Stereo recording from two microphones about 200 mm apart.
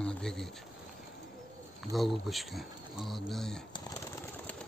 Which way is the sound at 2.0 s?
Centre (ahead or behind).